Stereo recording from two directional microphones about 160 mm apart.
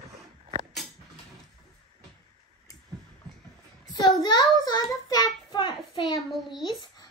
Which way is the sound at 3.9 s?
25° left (ahead or behind).